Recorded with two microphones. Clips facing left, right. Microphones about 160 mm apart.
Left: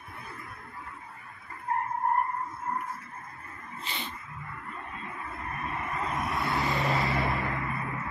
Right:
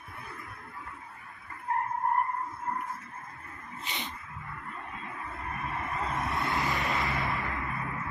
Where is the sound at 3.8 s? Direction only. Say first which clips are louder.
Even; 15° right (ahead or behind).